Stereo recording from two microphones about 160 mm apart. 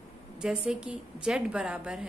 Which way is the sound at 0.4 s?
5° right (ahead or behind).